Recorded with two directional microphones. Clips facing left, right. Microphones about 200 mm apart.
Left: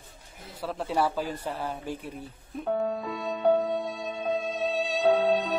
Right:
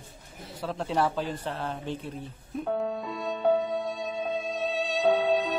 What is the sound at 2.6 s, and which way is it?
Music, centre (ahead or behind).